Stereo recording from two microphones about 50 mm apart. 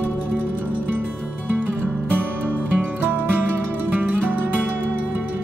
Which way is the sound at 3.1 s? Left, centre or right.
Right.